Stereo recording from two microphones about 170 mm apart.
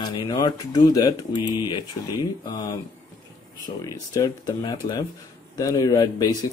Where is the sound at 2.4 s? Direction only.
20° left (ahead or behind).